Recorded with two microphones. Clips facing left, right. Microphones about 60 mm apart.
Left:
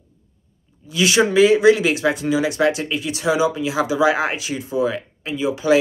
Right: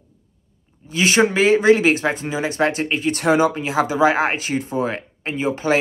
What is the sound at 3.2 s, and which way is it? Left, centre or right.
Speech, right.